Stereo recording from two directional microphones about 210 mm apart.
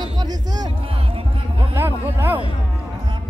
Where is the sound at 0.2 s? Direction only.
20° right (ahead or behind).